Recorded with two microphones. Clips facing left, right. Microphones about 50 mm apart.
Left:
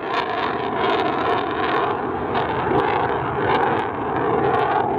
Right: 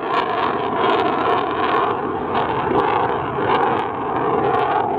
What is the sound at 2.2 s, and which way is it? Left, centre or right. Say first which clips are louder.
Vehicle: right 2 dB; centre.